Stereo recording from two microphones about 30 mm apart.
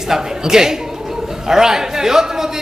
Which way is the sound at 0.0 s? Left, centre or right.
Centre.